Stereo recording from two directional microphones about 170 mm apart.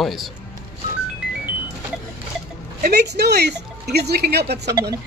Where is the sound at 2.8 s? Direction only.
70° right (ahead or behind).